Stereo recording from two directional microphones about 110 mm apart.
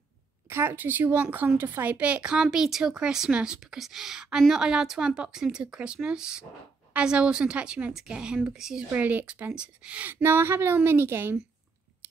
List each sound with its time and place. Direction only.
0.5 s a woman's voice: 20° right (ahead or behind)